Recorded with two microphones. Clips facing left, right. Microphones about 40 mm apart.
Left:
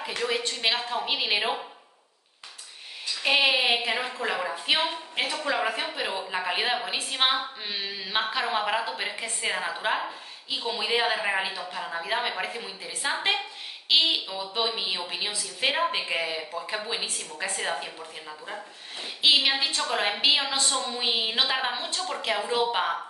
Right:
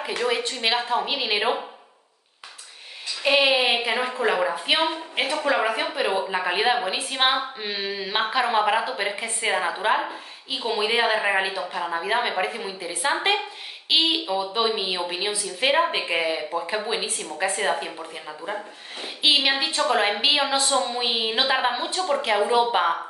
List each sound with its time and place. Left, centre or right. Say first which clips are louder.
0.0 s speech: right 4 dB; centre
3.2 s speech: right 3 dB; centre